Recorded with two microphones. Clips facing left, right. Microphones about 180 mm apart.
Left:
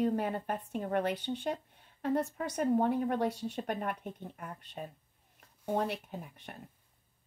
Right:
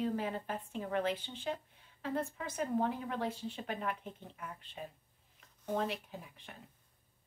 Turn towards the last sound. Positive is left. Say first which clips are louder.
# left 5 dB
turn(degrees=50)  # may be behind; listen again after turning